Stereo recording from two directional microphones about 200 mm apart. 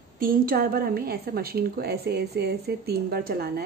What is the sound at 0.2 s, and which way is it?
A woman's voice, 45° right (ahead or behind).